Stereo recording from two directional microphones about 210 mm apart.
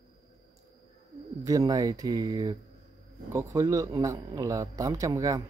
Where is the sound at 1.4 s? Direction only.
15° right (ahead or behind).